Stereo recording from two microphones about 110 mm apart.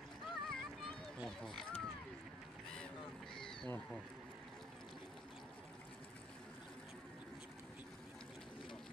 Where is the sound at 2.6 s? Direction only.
10° left (ahead or behind).